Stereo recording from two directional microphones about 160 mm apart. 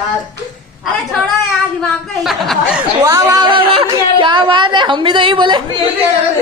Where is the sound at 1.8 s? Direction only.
Centre (ahead or behind).